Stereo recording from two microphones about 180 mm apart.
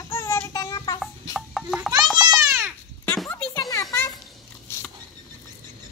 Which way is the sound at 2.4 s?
15° right (ahead or behind).